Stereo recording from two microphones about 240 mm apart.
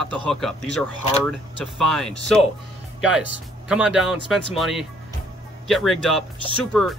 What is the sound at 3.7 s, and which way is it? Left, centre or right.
Speech, centre.